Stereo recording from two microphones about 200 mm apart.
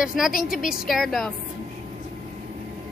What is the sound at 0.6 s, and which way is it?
Speech, centre (ahead or behind).